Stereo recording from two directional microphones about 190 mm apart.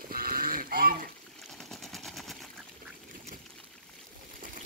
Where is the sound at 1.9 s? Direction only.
Centre (ahead or behind).